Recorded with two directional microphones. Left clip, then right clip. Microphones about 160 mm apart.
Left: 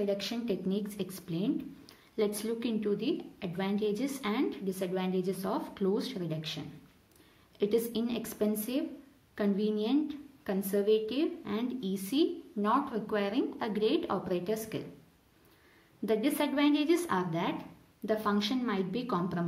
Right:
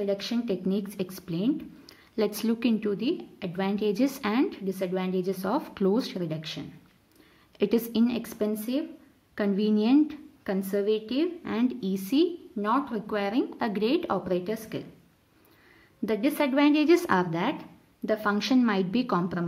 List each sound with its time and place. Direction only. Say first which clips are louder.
0.0 s speech: right 4 dB; 20° right (ahead or behind)
8.2 s a woman's voice: right 3 dB; 25° right (ahead or behind)
9.3 s a woman's voice: right 4 dB; 35° right (ahead or behind)
16.1 s speech: right 4 dB; 30° right (ahead or behind)